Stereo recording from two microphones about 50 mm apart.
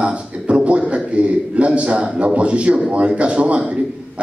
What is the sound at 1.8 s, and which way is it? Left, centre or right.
A man's voice, right.